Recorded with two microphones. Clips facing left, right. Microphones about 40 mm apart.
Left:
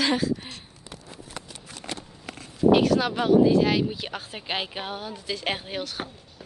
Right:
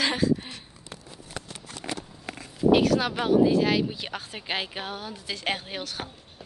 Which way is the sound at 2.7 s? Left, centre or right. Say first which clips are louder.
Left 1 dB; centre.